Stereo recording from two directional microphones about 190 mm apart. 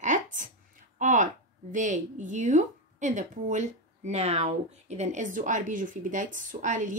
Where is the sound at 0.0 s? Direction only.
40° right (ahead or behind).